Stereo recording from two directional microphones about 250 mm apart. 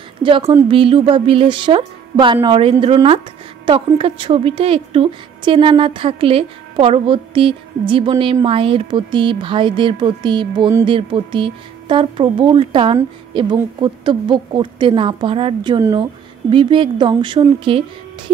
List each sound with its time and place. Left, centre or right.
0.2 s a woman's voice: centre